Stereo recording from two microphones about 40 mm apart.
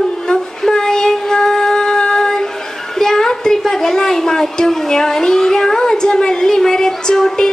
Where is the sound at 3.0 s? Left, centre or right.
Centre.